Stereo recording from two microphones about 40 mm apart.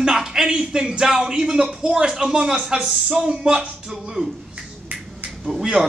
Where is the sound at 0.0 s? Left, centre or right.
Centre.